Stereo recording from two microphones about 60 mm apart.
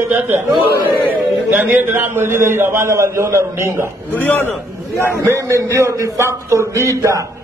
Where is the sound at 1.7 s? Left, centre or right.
Right.